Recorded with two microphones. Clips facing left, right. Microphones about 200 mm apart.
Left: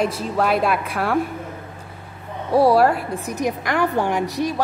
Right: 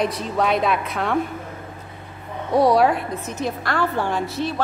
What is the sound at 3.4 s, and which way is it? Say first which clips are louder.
A woman's voice: left 2 dB; 15° left (ahead or behind).